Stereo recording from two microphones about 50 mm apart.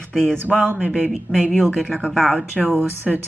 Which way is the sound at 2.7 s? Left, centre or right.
Right.